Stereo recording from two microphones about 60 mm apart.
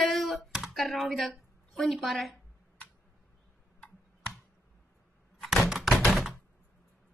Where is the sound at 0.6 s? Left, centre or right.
Centre.